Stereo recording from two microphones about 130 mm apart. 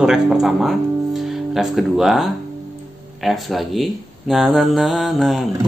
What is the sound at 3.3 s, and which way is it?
Speech, centre (ahead or behind).